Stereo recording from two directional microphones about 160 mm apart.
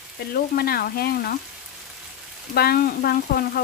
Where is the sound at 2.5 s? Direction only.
75° left (ahead or behind).